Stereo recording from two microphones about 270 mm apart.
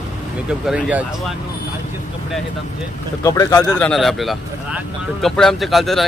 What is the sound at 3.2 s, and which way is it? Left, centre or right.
Speech, centre.